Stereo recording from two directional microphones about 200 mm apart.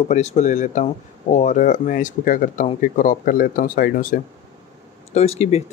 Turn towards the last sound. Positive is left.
turn(degrees=30)  # may be behind; listen again after turning